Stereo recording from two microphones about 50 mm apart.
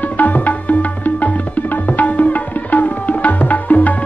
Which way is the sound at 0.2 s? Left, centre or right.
Left.